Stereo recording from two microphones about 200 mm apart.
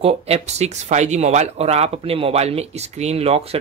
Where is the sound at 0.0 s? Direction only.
30° right (ahead or behind).